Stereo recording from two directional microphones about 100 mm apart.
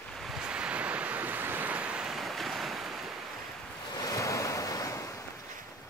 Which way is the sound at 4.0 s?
35° left (ahead or behind).